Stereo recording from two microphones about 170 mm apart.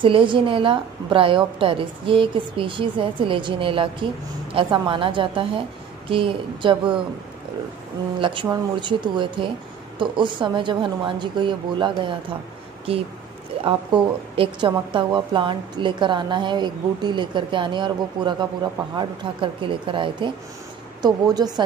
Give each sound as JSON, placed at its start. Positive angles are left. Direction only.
{"t": 0.0, "sound": "a woman's voice", "side_deg": -30}
{"t": 8.2, "sound": "a woman's voice", "side_deg": -30}
{"t": 14.3, "sound": "a woman's voice", "side_deg": -30}